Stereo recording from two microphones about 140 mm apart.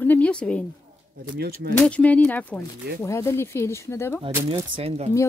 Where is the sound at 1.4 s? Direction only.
90° right.